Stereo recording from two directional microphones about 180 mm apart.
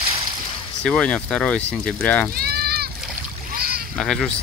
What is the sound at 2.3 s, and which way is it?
Sheep, 60° right (ahead or behind).